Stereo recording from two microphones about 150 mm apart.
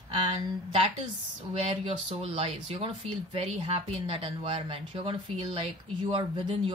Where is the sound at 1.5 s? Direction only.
40° right (ahead or behind).